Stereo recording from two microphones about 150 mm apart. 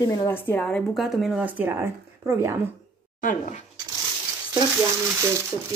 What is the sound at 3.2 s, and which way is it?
Speech, 65° left (ahead or behind).